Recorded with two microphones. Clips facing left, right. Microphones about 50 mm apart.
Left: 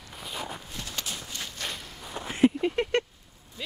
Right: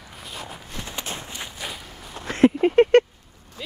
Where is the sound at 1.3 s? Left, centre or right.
Centre.